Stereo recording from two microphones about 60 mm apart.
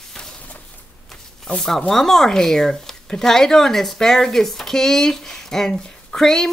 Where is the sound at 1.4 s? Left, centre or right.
Centre.